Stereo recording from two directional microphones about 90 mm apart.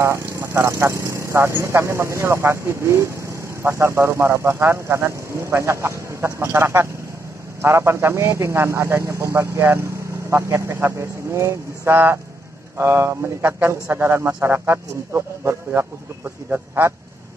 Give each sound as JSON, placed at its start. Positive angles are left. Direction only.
{"t": 0.0, "sound": "speech", "side_deg": -30}